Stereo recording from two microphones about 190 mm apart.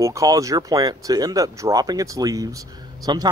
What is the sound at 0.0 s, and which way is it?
Speech, 15° right (ahead or behind).